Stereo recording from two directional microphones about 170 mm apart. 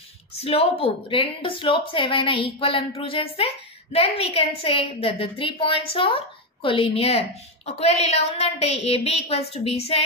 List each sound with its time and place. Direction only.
0.4 s a woman's voice: 35° left (ahead or behind)